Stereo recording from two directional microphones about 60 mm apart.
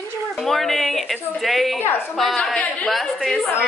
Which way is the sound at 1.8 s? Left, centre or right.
Left.